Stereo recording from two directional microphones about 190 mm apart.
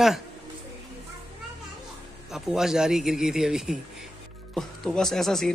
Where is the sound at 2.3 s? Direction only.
Centre (ahead or behind).